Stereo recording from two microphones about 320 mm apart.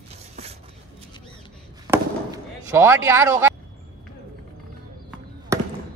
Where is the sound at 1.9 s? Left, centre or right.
Centre.